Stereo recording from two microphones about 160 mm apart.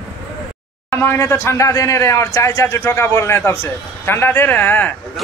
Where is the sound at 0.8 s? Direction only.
15° left (ahead or behind).